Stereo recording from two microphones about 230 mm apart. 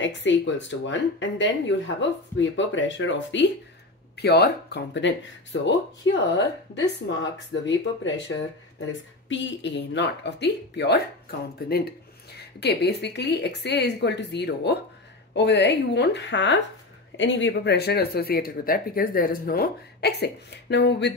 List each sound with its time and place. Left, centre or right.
0.0 s speech: left